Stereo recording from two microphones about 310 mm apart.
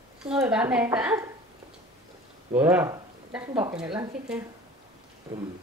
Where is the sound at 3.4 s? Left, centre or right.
Centre.